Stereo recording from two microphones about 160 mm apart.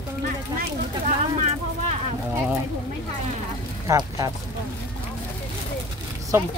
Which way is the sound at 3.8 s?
20° right (ahead or behind).